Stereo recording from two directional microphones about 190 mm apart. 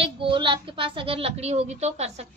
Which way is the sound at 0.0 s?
25° right (ahead or behind).